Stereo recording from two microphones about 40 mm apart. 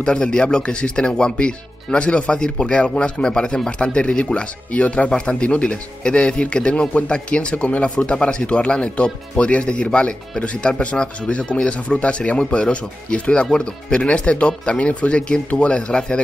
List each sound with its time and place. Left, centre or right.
0.0 s speech: left
5.1 s speech: left